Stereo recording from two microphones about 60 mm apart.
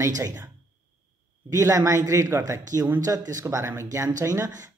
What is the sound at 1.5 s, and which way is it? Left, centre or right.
Speech, right.